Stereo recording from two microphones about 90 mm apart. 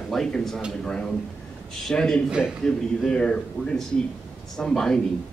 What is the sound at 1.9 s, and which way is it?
Speech, 10° left (ahead or behind).